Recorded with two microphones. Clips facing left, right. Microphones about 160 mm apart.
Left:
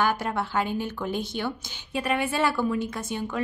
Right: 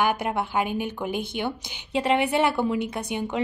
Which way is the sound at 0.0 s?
15° right (ahead or behind).